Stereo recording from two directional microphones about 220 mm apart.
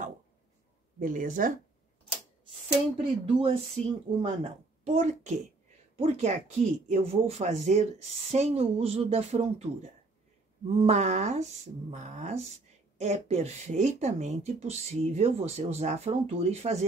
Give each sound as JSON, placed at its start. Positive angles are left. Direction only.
{"t": 0.9, "sound": "speech", "side_deg": -35}
{"t": 3.0, "sound": "speech", "side_deg": -25}